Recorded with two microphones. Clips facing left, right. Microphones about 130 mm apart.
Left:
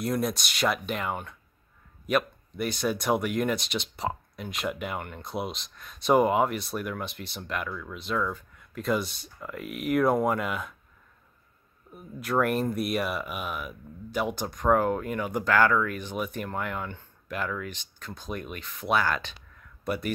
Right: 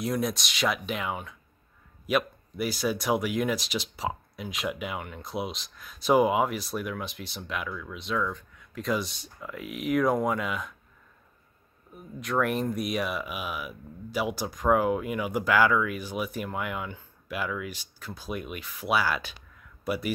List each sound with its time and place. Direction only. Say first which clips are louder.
0.0 s speech: left 1 dB; centre (ahead or behind)
11.9 s speech: left 2 dB; 5° left (ahead or behind)